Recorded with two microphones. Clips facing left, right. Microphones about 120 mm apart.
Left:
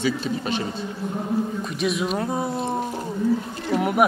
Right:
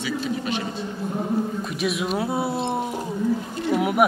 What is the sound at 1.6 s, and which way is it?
Speech, centre (ahead or behind).